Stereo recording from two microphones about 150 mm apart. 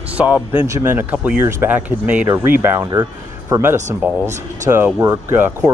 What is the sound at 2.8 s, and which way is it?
Speech, 25° right (ahead or behind).